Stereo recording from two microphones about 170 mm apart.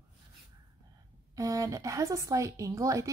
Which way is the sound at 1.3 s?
20° right (ahead or behind).